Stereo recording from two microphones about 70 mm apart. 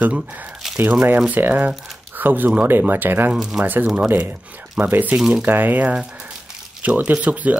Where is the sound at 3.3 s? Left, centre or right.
Centre.